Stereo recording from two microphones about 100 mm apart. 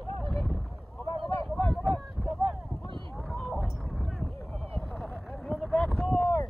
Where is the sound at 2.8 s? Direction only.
55° right (ahead or behind).